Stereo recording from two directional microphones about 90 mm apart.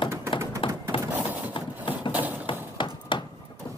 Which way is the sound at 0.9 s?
75° left (ahead or behind).